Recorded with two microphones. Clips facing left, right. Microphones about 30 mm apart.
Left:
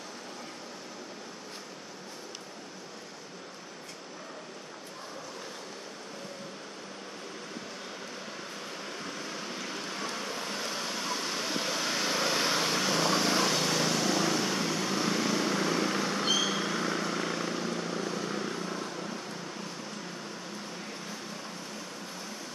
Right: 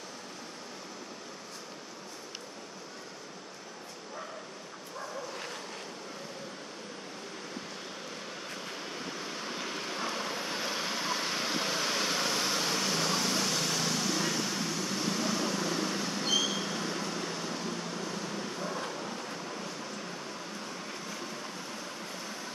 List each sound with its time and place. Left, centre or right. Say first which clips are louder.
8.8 s vehicle: even; centre
12.4 s vehicle: left 2 dB; centre; by 17.5 s left